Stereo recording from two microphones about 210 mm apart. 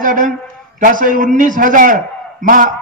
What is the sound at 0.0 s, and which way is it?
A man's voice, 40° right (ahead or behind).